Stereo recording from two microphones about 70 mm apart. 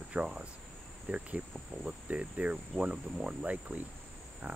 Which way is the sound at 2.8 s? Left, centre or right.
Centre.